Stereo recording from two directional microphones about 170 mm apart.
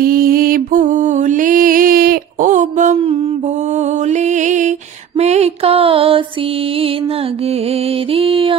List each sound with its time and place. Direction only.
0.0 s music: 60° right (ahead or behind); by 3.2 s 40° right (ahead or behind)
4.1 s mantra: 45° right (ahead or behind)
5.2 s music: 40° right (ahead or behind)
8.1 s mantra: 30° right (ahead or behind)